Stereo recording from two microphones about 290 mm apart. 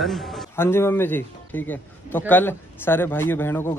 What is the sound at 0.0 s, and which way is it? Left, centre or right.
Speech, centre.